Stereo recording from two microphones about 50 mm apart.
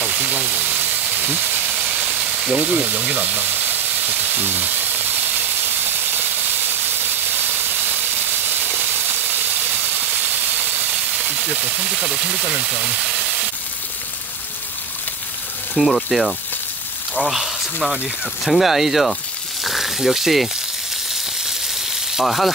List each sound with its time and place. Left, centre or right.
0.1 s sizzle: right
2.1 s sizzle: centre
2.6 s frying: right
4.2 s sizzle: right
11.4 s speech: right
15.7 s speech: centre
19.6 s a sound: centre
22.1 s speech: centre